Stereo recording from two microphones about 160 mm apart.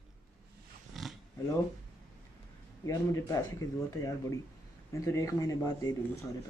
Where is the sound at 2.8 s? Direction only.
20° left (ahead or behind).